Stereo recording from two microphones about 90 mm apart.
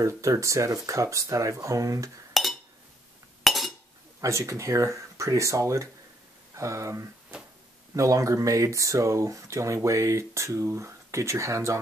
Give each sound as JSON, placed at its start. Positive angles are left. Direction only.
{"t": 0.0, "sound": "speech", "side_deg": -35}
{"t": 2.4, "sound": "chink", "side_deg": 0}
{"t": 4.2, "sound": "speech", "side_deg": -35}